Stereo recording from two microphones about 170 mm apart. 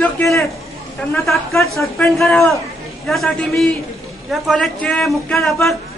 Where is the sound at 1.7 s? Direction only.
Centre (ahead or behind).